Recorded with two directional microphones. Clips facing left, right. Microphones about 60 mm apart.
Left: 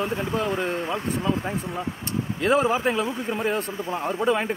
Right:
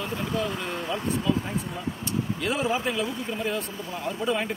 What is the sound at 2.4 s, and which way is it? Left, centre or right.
Speech, left.